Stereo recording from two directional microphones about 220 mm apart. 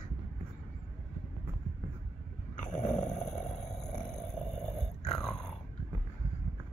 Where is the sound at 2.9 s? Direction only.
5° left (ahead or behind).